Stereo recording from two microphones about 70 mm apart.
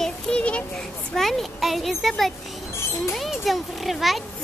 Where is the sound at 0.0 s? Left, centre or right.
Centre.